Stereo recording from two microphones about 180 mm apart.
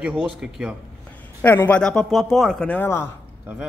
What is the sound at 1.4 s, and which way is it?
Speech, 10° left (ahead or behind).